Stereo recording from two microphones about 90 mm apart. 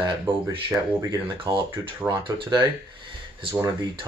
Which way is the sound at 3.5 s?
45° right (ahead or behind).